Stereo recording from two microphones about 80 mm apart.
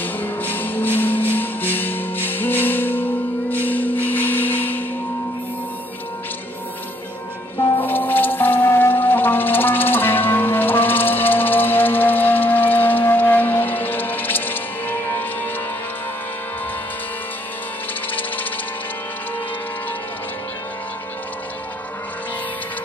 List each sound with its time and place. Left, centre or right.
0.0 s music: left
7.7 s music: left
18.1 s music: left